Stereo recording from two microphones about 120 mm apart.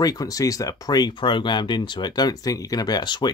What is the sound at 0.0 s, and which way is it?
Speech, 30° left (ahead or behind).